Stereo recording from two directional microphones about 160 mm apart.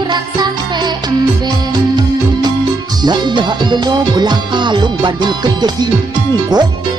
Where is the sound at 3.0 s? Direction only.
30° right (ahead or behind).